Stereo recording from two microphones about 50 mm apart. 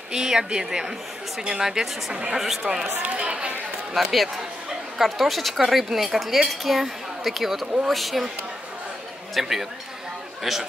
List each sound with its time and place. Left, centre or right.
0.1 s a woman's voice: centre
2.1 s speech: centre
2.4 s speech: centre
2.9 s speech: right
3.9 s speech: centre
7.6 s speech: centre
7.9 s speech: centre
9.3 s speech: centre